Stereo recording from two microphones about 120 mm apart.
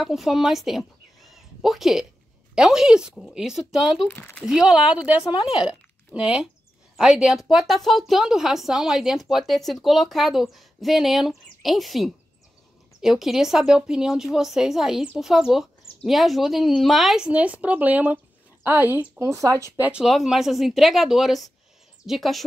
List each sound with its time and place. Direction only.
0.0 s speech: 5° right (ahead or behind)
4.1 s speech: 15° left (ahead or behind)
4.4 s speech: 5° right (ahead or behind); by 19.7 s 25° right (ahead or behind)
19.8 s speech: 5° right (ahead or behind)